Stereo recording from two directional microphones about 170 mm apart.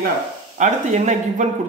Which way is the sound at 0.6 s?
45° right (ahead or behind).